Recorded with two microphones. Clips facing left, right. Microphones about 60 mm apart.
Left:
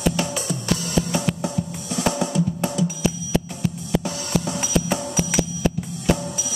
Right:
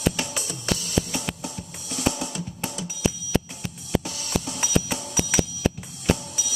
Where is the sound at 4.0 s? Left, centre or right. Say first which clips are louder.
Left 5 dB; left.